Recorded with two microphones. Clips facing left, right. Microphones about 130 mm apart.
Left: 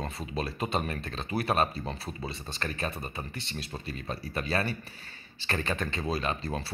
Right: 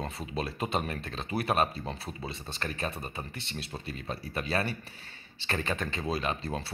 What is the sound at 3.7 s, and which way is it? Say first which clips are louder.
Speech: left 1 dB; 5° right (ahead or behind).